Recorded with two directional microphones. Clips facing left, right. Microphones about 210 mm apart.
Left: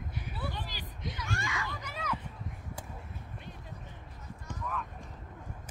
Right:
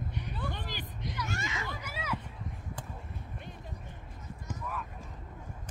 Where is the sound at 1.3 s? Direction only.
20° right (ahead or behind).